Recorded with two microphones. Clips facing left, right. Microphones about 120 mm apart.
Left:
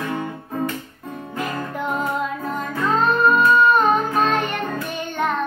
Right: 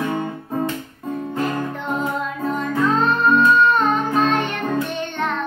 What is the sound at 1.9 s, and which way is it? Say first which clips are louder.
Music: even; centre (ahead or behind).